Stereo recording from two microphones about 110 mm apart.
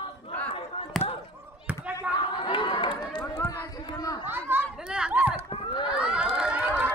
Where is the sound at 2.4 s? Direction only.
45° left (ahead or behind).